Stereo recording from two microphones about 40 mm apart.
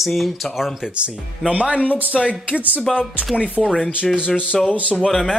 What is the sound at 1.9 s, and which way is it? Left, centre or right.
Speech, left.